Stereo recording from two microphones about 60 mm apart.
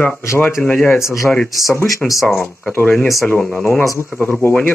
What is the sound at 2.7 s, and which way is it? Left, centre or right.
Speech, left.